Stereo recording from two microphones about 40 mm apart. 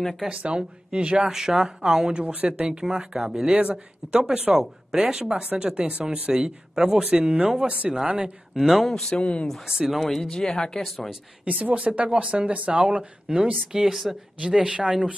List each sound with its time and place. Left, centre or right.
0.3 s speech: right
1.3 s speech: centre
2.2 s speech: right
3.5 s a woman's voice: right
4.1 s speech: centre
6.3 s speech: centre
8.8 s speech: centre
9.1 s speech: left
9.7 s speech: centre
10.0 s speech: centre
10.3 s speech: centre
10.8 s speech: centre
11.4 s a woman's voice: right; by 14.1 s centre
14.4 s speech: right